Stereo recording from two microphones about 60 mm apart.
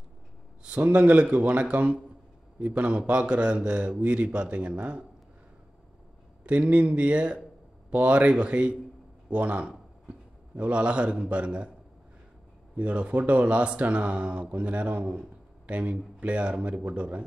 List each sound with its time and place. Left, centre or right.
0.7 s speech: right
6.4 s a man's voice: centre
12.7 s speech: right